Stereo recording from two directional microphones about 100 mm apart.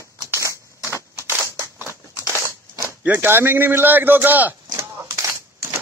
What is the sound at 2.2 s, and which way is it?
Crumpling, 30° right (ahead or behind).